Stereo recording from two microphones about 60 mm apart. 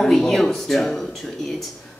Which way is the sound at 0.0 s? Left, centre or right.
Centre.